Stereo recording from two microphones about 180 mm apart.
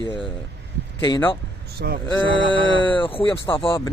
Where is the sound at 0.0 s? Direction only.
30° left (ahead or behind).